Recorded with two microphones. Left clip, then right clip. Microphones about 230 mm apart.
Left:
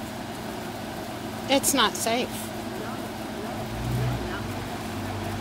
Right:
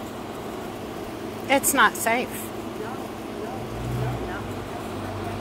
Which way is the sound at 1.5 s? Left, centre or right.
Centre.